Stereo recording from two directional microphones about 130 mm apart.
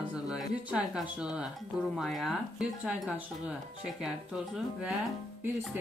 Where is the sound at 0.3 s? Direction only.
5° right (ahead or behind).